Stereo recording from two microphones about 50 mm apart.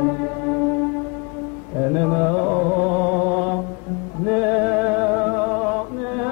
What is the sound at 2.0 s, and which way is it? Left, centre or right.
Music, right.